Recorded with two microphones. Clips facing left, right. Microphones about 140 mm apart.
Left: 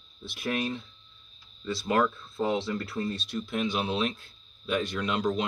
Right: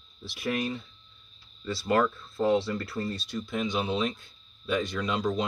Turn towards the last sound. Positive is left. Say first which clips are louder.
# even
turn(degrees=0)  # may be behind; listen again after turning